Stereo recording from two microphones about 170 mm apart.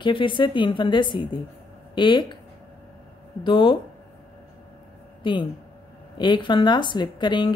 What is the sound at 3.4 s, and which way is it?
Speech, 30° left (ahead or behind).